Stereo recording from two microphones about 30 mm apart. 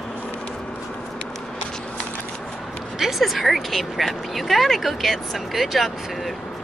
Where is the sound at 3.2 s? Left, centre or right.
Centre.